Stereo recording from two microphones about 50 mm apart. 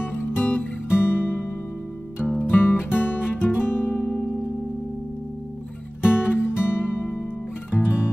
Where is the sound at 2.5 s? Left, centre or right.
Left.